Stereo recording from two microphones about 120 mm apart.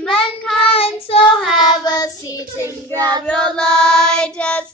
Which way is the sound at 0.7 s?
55° left (ahead or behind).